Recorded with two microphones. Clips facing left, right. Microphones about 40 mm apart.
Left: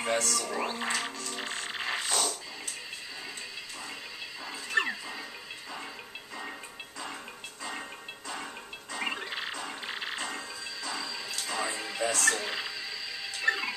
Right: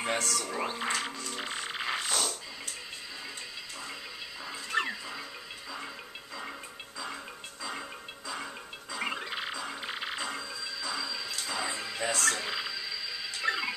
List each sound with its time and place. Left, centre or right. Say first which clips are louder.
0.0 s music: left 1 dB; centre
0.5 s speech: left 1 dB; centre
1.5 s music: even; centre
4.6 s a sound: left 2 dB; centre
9.0 s frog: even; centre
10.1 s music: even; centre
11.6 s music: left 1 dB; centre
12.2 s television: left 2 dB; centre